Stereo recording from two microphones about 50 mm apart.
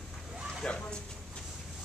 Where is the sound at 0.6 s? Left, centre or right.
Centre.